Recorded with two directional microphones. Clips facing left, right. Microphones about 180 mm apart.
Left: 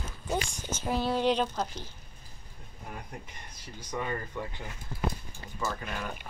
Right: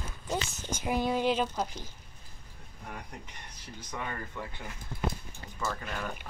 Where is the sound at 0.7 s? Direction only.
15° right (ahead or behind).